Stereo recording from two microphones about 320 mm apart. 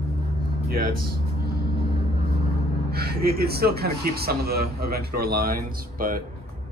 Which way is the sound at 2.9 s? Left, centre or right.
Right.